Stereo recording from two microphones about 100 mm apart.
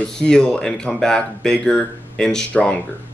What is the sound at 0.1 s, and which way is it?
Speech, 5° left (ahead or behind).